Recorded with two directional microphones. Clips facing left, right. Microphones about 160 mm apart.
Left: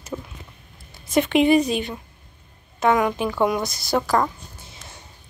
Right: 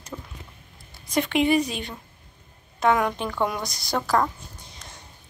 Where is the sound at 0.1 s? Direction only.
15° left (ahead or behind).